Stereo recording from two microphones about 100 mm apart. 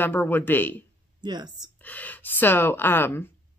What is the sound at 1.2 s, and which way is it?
Speech, 45° right (ahead or behind).